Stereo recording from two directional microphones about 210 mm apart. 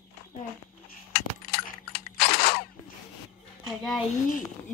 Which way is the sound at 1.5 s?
50° left (ahead or behind).